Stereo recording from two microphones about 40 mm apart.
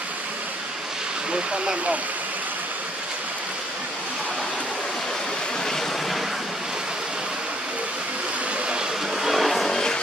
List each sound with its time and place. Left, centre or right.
1.3 s speech: right
9.2 s vehicle: centre
9.7 s music: centre